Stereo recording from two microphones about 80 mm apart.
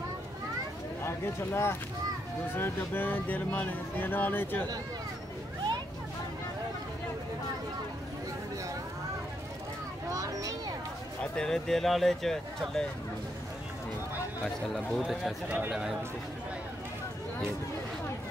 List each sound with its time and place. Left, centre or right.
1.0 s speech: left
10.0 s a sound: right
11.3 s speech: centre
14.7 s speech: centre
15.4 s speech: right
15.7 s speech: centre